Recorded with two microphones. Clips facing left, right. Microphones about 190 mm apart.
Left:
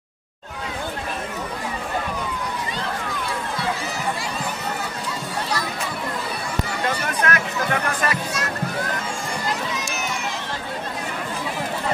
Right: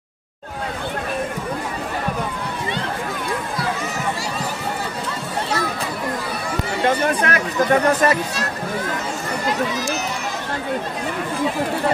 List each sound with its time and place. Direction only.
6.8 s speech: 35° right (ahead or behind)